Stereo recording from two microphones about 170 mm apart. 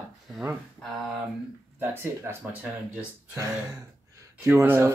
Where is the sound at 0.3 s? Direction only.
10° right (ahead or behind).